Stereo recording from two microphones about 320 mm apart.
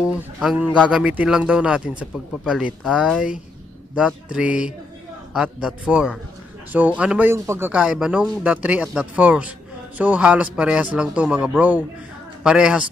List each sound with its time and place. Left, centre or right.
0.0 s a man's voice: centre